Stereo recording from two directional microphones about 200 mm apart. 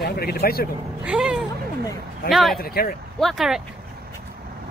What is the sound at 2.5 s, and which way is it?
Speech, 50° left (ahead or behind).